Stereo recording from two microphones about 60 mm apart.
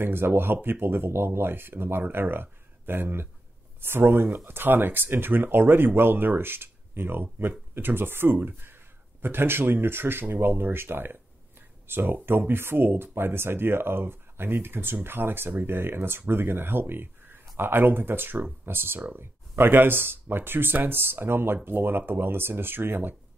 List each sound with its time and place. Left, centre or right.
0.0 s speech: right